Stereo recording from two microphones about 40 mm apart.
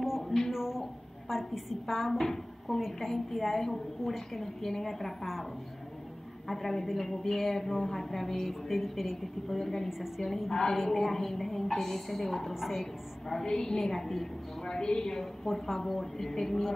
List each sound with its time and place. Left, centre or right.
0.5 s a sound: centre
1.3 s a woman's voice: centre
6.5 s a woman's voice: centre
13.3 s a woman's voice: centre
15.4 s a woman's voice: centre